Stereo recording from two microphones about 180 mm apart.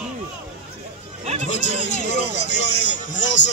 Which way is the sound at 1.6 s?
40° left (ahead or behind).